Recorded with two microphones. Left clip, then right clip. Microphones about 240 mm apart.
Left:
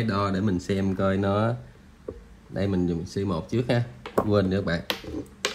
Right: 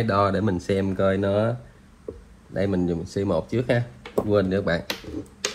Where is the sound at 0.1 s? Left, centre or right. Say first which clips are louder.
Right 6 dB; centre.